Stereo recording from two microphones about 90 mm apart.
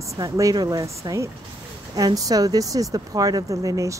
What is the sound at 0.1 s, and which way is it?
Speech, 40° right (ahead or behind).